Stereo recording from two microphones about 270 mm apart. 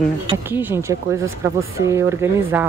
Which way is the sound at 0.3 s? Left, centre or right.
Centre.